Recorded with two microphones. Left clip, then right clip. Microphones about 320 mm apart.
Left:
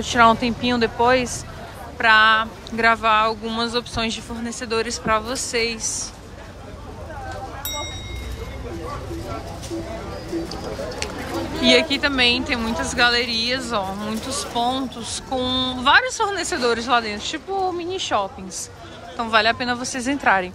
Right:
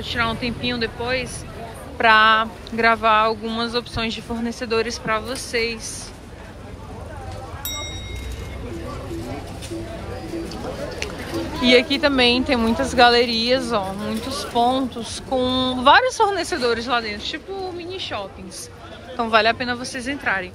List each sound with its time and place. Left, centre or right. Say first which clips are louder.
0.0 s speech: left 8 dB; centre
2.0 s speech: right 1 dB; centre
11.6 s a woman's voice: right 1 dB; centre
19.1 s speech: right 1 dB; centre